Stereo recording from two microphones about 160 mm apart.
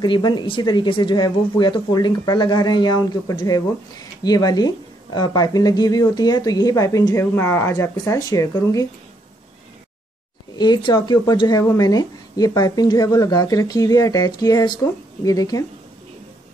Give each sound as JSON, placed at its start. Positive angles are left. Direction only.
{"t": 0.0, "sound": "speech", "side_deg": 30}
{"t": 10.6, "sound": "speech", "side_deg": 25}